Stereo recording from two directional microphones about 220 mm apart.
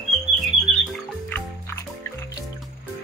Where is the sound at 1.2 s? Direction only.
10° left (ahead or behind).